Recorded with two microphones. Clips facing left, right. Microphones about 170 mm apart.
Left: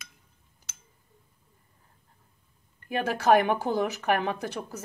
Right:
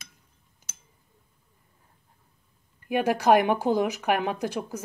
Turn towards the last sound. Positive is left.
turn(degrees=-15)  # may be behind; listen again after turning